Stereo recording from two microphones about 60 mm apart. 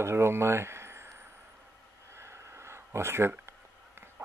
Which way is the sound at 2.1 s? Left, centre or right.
Right.